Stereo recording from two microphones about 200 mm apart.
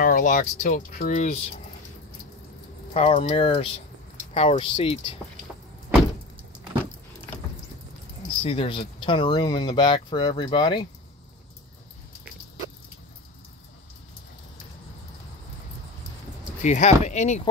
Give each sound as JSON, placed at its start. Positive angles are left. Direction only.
{"t": 0.0, "sound": "speech", "side_deg": 40}
{"t": 2.9, "sound": "speech", "side_deg": 25}
{"t": 8.4, "sound": "speech", "side_deg": 30}
{"t": 16.6, "sound": "speech", "side_deg": 35}